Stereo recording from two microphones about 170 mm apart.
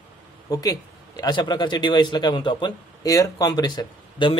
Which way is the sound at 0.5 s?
20° left (ahead or behind).